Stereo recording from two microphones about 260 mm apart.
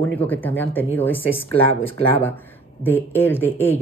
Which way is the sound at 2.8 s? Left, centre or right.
Centre.